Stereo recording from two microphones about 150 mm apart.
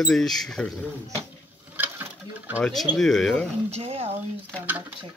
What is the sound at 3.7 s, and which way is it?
Speech, 40° right (ahead or behind).